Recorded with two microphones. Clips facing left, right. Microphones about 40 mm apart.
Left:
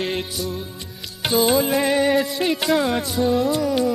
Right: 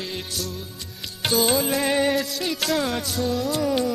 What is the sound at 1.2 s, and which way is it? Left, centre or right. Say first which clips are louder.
Music: left 3 dB; centre.